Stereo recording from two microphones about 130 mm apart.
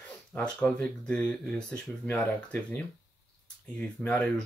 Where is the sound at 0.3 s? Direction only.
10° left (ahead or behind).